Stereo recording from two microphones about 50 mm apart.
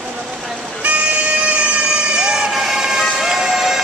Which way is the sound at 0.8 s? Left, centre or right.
Right.